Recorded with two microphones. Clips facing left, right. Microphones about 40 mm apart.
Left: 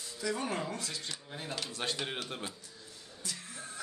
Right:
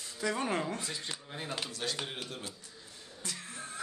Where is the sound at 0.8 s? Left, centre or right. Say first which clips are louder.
Right 1 dB; right.